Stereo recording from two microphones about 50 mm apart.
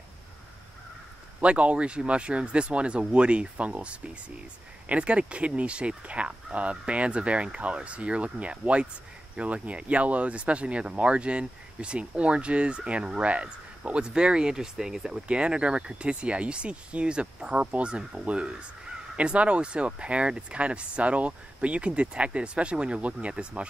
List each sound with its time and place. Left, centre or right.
1.4 s speech: right